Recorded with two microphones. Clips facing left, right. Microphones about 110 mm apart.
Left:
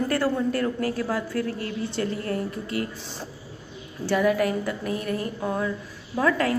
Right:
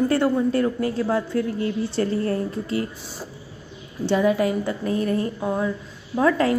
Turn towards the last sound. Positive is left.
turn(degrees=-25)  # may be behind; listen again after turning